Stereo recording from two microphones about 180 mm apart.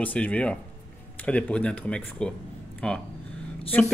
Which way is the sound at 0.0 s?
10° left (ahead or behind).